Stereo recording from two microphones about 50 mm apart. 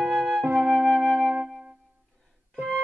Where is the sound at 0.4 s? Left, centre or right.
Right.